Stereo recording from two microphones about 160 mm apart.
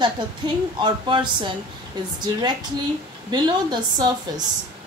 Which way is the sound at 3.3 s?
30° right (ahead or behind).